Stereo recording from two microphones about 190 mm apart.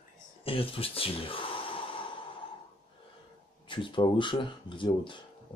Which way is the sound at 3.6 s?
25° left (ahead or behind).